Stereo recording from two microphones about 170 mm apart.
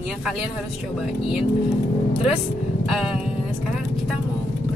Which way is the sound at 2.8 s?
5° right (ahead or behind).